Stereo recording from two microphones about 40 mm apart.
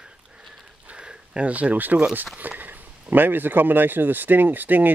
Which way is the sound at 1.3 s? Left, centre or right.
Right.